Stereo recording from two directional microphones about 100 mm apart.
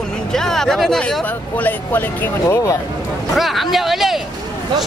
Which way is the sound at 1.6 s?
20° left (ahead or behind).